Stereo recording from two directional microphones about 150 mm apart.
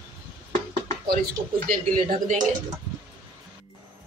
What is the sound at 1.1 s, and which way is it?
Speech, 80° right.